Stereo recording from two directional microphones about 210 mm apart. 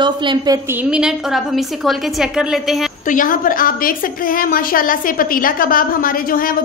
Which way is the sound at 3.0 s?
40° left (ahead or behind).